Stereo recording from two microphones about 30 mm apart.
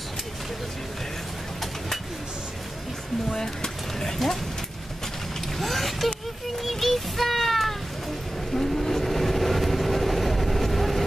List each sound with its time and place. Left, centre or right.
3.3 s a sound: centre
5.6 s vehicle: centre
6.6 s children playing: centre
8.5 s vehicle: centre